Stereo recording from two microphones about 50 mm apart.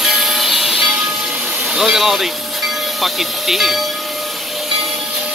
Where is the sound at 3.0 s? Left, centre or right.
Centre.